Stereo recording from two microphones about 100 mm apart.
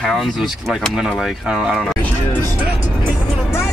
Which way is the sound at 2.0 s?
15° left (ahead or behind).